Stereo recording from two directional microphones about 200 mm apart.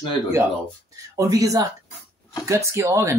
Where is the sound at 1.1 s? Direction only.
15° right (ahead or behind).